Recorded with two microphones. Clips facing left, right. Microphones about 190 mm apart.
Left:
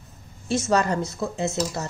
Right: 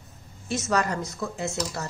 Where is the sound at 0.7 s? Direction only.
30° left (ahead or behind).